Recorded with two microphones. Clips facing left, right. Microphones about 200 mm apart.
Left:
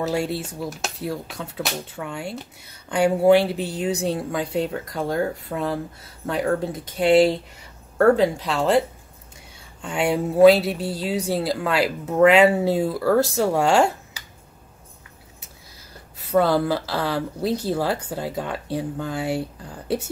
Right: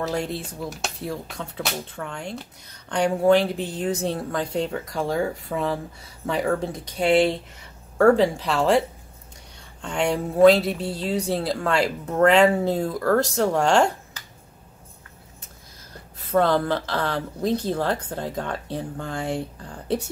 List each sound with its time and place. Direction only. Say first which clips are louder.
0.0 s speech: left 3 dB; 5° left (ahead or behind)
16.3 s speech: left 1 dB; 5° left (ahead or behind)